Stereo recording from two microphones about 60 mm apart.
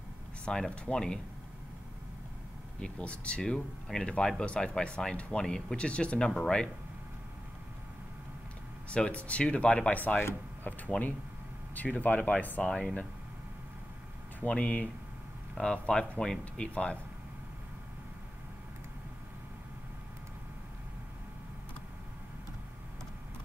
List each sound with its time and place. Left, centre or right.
0.5 s speech: centre
2.8 s speech: centre
8.9 s speech: centre
14.4 s speech: left